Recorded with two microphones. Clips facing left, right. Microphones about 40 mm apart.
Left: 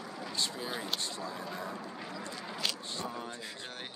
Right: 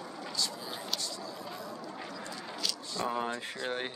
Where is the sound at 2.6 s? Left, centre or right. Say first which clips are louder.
Right 1 dB; left.